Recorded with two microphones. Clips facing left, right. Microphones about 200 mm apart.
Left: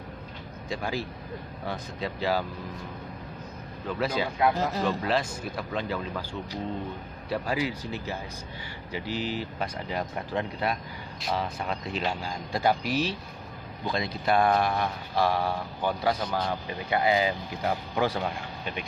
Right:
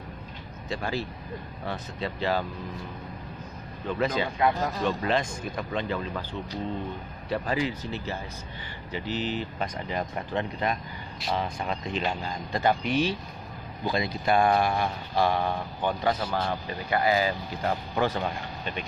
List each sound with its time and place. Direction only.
0.7 s speech: 15° left (ahead or behind)
4.0 s speech: 5° left (ahead or behind)
16.1 s speech: 5° right (ahead or behind)
16.6 s speech: 20° left (ahead or behind)
17.6 s speech: 5° left (ahead or behind)